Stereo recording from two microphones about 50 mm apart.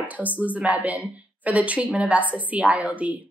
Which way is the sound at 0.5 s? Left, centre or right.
Right.